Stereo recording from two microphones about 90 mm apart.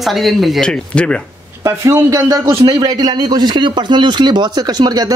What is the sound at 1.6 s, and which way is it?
Speech, 35° right (ahead or behind).